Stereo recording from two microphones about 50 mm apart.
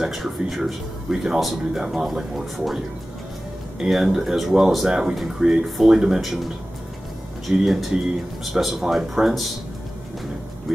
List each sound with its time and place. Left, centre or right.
0.0 s speech: centre
3.9 s speech: centre